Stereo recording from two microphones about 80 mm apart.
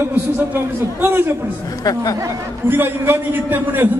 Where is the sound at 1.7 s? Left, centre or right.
Left.